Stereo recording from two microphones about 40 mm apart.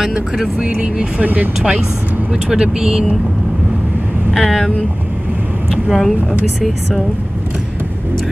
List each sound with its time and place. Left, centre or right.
0.6 s speech: right
1.2 s speech: right
1.6 s speech: centre
4.3 s speech: centre
5.9 s speech: centre